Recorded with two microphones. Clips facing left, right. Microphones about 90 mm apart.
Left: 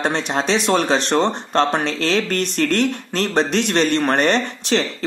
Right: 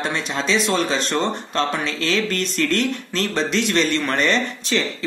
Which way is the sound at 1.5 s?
45° left (ahead or behind).